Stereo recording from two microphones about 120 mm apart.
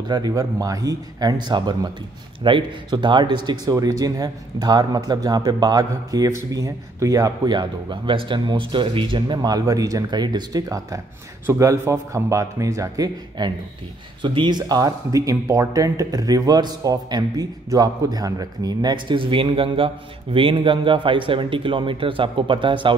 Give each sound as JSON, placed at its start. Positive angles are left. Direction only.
{"t": 0.1, "sound": "speech", "side_deg": -30}
{"t": 14.2, "sound": "speech", "side_deg": -40}